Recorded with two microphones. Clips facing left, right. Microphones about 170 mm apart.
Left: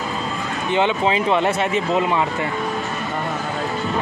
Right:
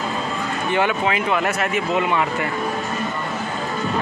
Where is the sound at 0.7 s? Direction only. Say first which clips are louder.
Left 2 dB; 20° left (ahead or behind).